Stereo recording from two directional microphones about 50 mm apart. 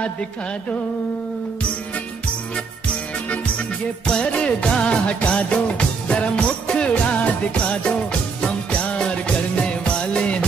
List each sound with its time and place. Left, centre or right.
4.0 s music: left